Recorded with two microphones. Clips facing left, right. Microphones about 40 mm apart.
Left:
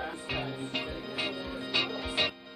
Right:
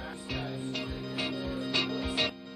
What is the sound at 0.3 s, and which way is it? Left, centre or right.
Music, left.